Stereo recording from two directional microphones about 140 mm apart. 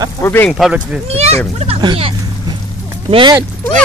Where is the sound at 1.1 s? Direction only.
50° right (ahead or behind).